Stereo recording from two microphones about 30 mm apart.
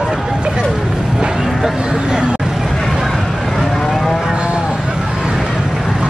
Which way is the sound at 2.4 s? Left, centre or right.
Centre.